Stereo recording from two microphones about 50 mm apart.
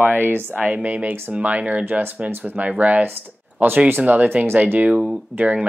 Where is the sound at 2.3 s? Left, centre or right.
Right.